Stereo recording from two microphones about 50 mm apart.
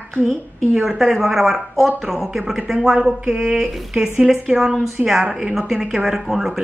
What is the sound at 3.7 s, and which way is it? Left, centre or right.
A woman's voice, centre.